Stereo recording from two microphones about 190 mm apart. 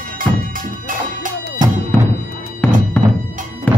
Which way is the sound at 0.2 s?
45° right (ahead or behind).